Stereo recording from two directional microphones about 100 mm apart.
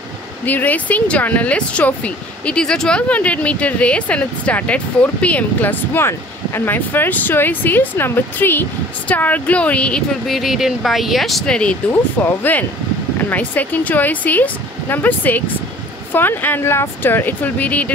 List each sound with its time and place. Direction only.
0.5 s speech: 15° left (ahead or behind)
11.9 s speech: 25° left (ahead or behind)